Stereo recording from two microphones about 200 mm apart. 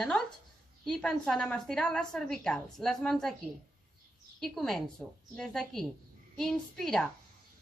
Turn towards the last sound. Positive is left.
turn(degrees=0)  # may be behind; listen again after turning